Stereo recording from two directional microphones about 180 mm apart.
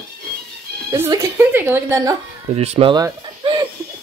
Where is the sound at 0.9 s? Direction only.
15° right (ahead or behind).